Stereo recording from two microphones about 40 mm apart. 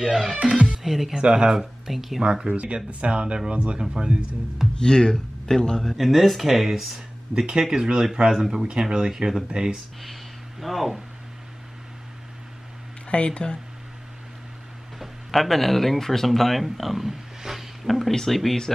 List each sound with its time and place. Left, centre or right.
0.0 s speech: centre
1.1 s speech: right
1.5 s speech: centre
2.5 s speech: right
3.8 s speech: centre
4.7 s speech: centre
5.9 s speech: centre
7.3 s speech: right
10.6 s speech: centre
13.1 s speech: left
15.0 s speech: centre